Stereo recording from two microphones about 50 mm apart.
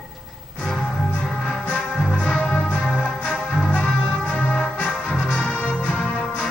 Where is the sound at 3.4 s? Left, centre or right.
Centre.